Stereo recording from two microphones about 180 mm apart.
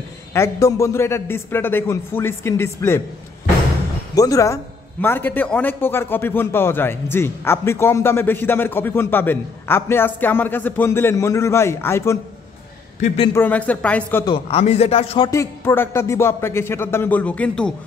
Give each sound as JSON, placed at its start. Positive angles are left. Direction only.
{"t": 0.3, "sound": "a man's voice", "side_deg": 15}
{"t": 4.1, "sound": "a man's voice", "side_deg": 20}
{"t": 13.0, "sound": "speech", "side_deg": 35}
{"t": 13.3, "sound": "a man's voice", "side_deg": 10}
{"t": 14.2, "sound": "speech", "side_deg": 30}
{"t": 15.2, "sound": "a man's voice", "side_deg": 15}